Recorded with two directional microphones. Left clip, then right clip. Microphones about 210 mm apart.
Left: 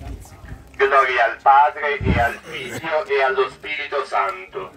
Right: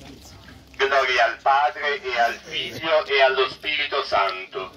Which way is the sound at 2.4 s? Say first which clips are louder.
Right 2 dB; 10° left (ahead or behind).